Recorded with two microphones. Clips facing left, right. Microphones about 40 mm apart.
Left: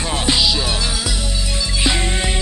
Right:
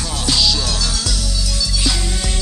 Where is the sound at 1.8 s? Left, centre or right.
Left.